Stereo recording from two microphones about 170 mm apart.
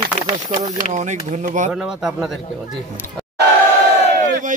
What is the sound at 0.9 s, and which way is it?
Speech, 45° right (ahead or behind).